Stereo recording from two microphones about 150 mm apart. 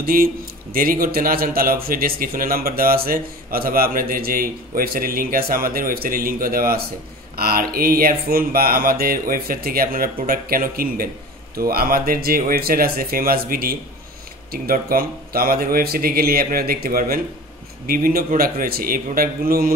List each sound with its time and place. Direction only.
0.0 s a man's voice: 75° right (ahead or behind)
11.5 s a man's voice: 85° right